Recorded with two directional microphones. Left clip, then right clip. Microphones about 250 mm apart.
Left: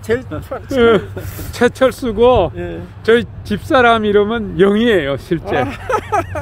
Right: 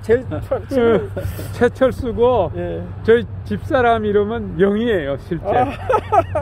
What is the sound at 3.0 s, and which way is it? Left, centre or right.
Speech, left.